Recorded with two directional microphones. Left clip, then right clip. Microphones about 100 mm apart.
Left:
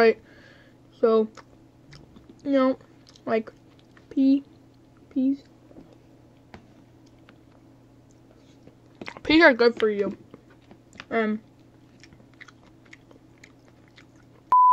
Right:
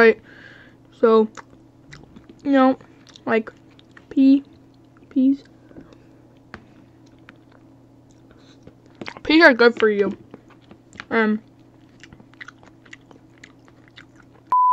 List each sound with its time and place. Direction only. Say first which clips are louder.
0.0 s a sound: right 5 dB; 20° right (ahead or behind)
1.9 s chewing: right 6 dB; 20° right (ahead or behind)
4.1 s speech: right 6 dB; 15° right (ahead or behind)
5.1 s speech: right 6 dB; 25° right (ahead or behind)
9.0 s speech: right 4 dB; centre (ahead or behind)
9.6 s speech: right 5 dB; 20° right (ahead or behind)
14.5 s a sound: even; centre (ahead or behind)